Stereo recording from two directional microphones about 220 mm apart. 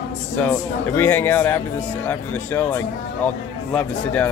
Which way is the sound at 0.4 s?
5° left (ahead or behind).